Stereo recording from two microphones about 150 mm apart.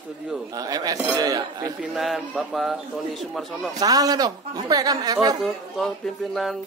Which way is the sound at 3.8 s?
25° right (ahead or behind).